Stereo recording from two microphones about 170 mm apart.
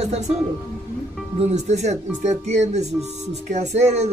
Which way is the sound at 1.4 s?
40° right (ahead or behind).